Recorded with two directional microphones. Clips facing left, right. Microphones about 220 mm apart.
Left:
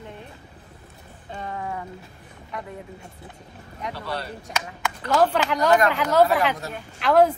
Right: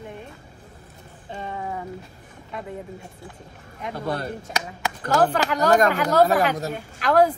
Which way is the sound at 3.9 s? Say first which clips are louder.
Right 6 dB; 50° right (ahead or behind).